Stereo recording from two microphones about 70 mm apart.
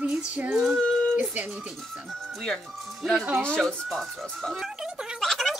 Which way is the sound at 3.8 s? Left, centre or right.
Centre.